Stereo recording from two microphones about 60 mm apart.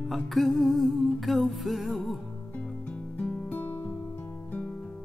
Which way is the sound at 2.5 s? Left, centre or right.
Left.